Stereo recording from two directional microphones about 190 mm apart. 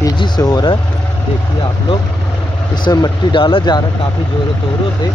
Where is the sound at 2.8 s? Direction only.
20° left (ahead or behind).